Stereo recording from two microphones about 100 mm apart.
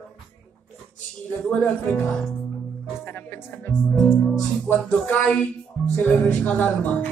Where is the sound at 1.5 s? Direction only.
10° left (ahead or behind).